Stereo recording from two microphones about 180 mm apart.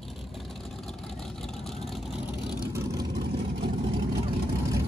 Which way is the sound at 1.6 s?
Centre (ahead or behind).